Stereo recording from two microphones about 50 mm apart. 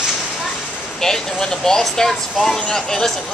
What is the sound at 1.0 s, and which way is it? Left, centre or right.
Speech, centre.